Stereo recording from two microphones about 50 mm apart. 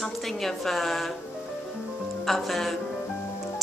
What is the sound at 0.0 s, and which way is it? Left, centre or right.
A woman's voice, centre.